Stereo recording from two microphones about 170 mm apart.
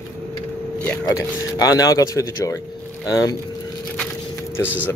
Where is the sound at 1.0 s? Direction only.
20° left (ahead or behind).